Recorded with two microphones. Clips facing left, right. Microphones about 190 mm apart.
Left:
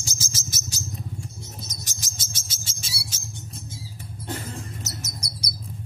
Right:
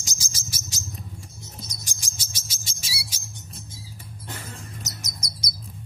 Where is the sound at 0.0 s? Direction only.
15° right (ahead or behind).